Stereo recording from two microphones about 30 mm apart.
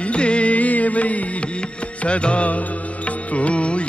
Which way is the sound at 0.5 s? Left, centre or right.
Left.